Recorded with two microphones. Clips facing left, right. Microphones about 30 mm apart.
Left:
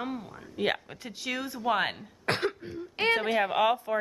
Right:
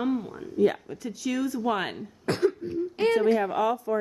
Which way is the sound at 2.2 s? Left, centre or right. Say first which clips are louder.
Right 4 dB; left.